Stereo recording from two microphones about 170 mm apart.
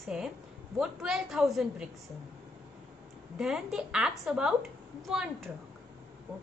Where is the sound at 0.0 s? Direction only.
5° right (ahead or behind).